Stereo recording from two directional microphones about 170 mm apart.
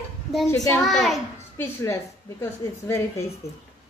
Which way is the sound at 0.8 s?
Centre (ahead or behind).